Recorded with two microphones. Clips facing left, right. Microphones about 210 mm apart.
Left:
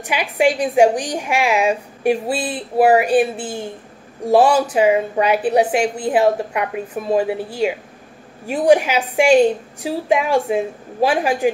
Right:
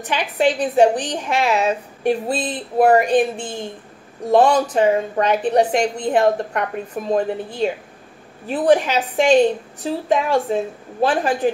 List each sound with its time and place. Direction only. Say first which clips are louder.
0.0 s a woman's voice: left 1 dB; 10° left (ahead or behind)